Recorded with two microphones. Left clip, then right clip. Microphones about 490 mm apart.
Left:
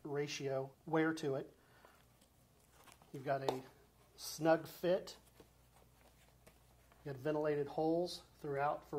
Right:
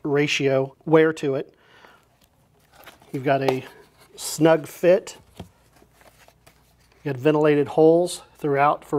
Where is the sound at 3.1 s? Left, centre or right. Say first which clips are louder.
Right 18 dB; right.